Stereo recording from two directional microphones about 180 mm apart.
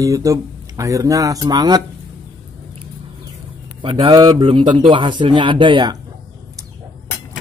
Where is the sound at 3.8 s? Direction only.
30° right (ahead or behind).